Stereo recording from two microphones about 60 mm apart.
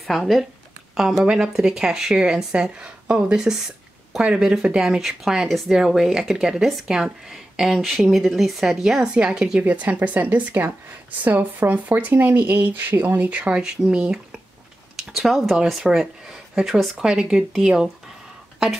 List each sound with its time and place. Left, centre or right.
0.0 s speech: centre
9.6 s a woman's voice: right
15.0 s speech: centre